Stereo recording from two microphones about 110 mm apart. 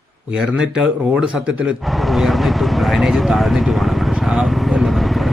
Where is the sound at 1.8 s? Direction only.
Centre (ahead or behind).